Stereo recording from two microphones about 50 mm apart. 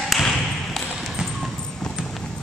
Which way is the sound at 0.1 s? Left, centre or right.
Centre.